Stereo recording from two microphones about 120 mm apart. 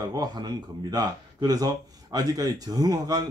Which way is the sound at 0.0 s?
30° right (ahead or behind).